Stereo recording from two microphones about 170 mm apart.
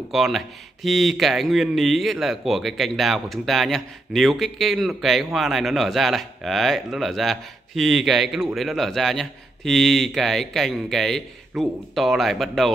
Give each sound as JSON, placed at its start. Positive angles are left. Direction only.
{"t": 0.1, "sound": "a man's voice", "side_deg": 0}